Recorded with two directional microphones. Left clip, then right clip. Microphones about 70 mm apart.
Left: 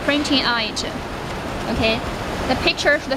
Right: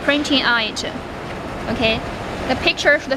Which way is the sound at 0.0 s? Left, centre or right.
Right.